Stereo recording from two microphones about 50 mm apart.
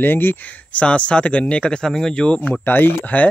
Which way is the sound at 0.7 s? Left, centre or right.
Left.